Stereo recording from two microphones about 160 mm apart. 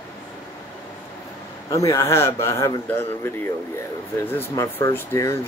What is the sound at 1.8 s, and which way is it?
Speech, 20° left (ahead or behind).